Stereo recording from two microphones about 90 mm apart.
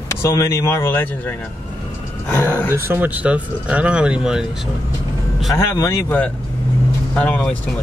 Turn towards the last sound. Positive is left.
turn(degrees=15)  # may be behind; listen again after turning